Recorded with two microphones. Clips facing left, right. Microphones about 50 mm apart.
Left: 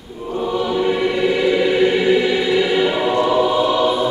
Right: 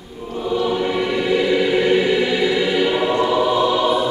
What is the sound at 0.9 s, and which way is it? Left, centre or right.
Choir, left.